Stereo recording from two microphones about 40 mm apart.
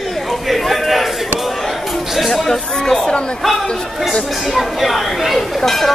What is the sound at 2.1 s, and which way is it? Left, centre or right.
Chatter, centre.